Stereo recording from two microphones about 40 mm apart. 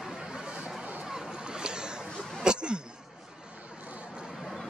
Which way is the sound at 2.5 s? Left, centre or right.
Right.